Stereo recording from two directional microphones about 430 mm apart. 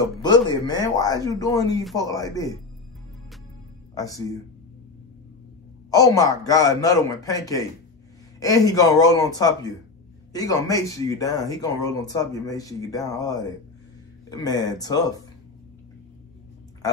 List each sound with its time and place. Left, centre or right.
0.2 s speech: centre
3.9 s speech: centre
5.9 s speech: centre